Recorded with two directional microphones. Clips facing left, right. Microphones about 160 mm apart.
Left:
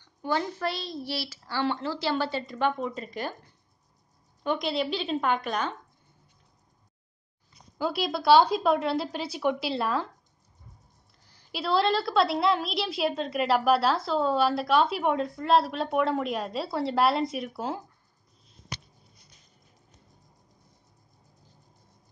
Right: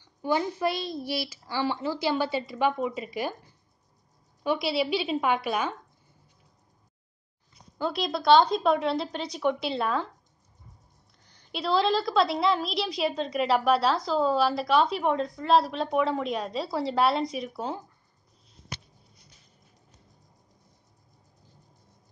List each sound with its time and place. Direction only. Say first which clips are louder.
0.0 s a woman's voice: right 2 dB; 10° right (ahead or behind)
4.4 s a woman's voice: right 1 dB; 5° right (ahead or behind)
7.8 s a woman's voice: even; 5° left (ahead or behind)
11.2 s a woman's voice: right 1 dB; 5° left (ahead or behind)